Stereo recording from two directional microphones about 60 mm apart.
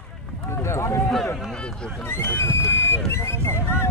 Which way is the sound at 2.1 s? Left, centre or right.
Left.